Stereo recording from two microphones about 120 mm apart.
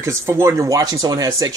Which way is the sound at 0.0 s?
25° right (ahead or behind).